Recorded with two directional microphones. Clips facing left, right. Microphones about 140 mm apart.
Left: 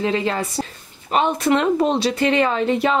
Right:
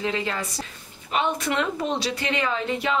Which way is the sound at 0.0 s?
30° left (ahead or behind).